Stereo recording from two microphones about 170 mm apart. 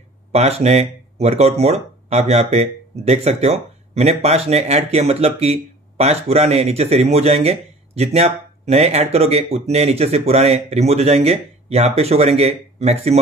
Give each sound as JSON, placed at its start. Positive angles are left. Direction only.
{"t": 0.3, "sound": "speech", "side_deg": -40}